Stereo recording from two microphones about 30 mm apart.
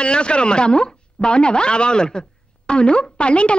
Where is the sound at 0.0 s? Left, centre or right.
Left.